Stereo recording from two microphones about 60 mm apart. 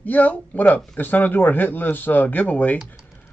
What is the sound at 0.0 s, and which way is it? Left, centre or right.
Speech, left.